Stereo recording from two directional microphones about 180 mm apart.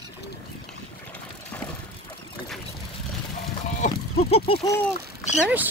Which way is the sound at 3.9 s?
30° left (ahead or behind).